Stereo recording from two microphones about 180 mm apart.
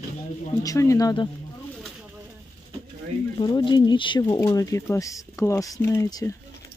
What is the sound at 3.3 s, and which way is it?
Speech, 25° left (ahead or behind).